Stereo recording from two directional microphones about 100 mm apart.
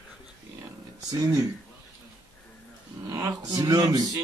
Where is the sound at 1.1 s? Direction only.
35° right (ahead or behind).